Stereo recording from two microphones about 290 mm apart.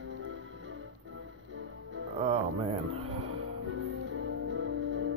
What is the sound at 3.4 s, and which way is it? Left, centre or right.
Music, right.